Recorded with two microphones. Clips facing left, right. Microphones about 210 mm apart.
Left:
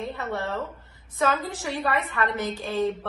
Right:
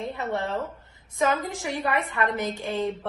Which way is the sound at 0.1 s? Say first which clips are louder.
Right 1 dB; 15° right (ahead or behind).